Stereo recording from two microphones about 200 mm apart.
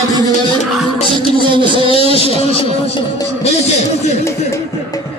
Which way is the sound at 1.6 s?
25° right (ahead or behind).